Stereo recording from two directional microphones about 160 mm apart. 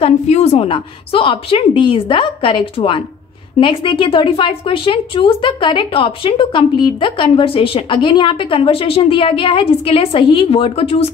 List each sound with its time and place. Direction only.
0.0 s a woman's voice: 40° left (ahead or behind)